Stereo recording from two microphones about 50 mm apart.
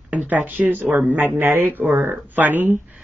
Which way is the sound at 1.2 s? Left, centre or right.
Right.